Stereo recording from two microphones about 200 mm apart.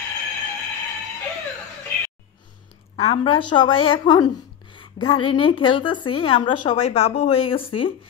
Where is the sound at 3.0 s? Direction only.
25° left (ahead or behind).